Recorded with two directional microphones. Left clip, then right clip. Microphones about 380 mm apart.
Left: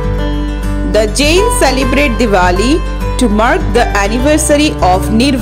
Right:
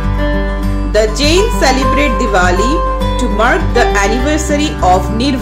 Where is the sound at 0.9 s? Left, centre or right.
Left.